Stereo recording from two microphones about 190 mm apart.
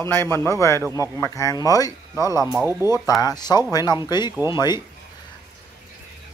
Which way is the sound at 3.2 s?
20° left (ahead or behind).